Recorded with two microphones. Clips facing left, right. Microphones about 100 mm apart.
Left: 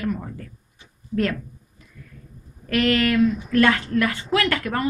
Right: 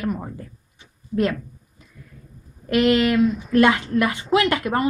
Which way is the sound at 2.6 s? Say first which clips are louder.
Right 3 dB; 20° right (ahead or behind).